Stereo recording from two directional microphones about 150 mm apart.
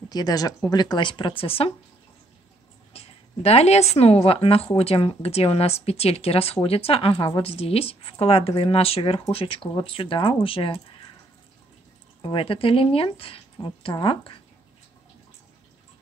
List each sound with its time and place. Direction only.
0.1 s speech: 25° left (ahead or behind)
2.9 s a sound: 40° left (ahead or behind)
3.9 s a woman's voice: 45° left (ahead or behind)
12.2 s a woman's voice: 35° left (ahead or behind)